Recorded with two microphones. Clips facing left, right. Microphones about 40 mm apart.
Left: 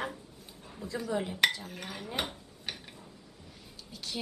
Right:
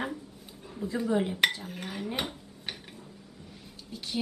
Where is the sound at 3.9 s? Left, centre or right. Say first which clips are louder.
Right 5 dB; centre.